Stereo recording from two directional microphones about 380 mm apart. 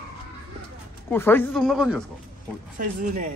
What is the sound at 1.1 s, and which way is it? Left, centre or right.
Speech, centre.